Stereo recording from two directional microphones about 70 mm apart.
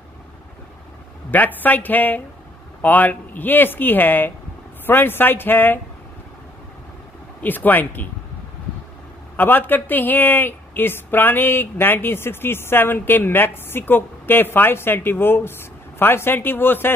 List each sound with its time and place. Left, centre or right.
1.3 s speech: left
7.4 s speech: left
9.4 s a woman's voice: left